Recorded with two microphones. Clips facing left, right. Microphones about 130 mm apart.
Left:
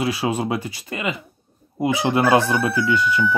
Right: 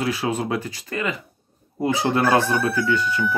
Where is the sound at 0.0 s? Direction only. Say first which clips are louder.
Left 2 dB; 15° left (ahead or behind).